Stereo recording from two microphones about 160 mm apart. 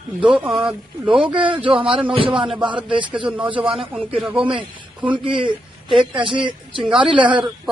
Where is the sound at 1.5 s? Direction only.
35° right (ahead or behind).